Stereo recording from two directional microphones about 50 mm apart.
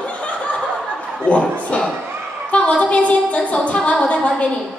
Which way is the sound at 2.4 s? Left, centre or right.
Left.